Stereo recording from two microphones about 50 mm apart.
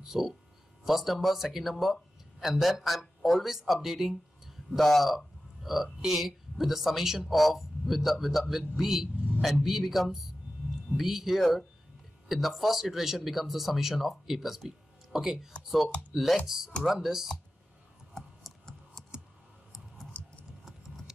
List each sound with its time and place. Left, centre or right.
0.0 s speech: centre
18.1 s computer keyboard: centre
20.1 s a sound: left